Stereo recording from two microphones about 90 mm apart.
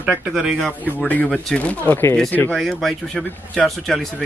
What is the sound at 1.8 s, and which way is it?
Speech, 20° left (ahead or behind).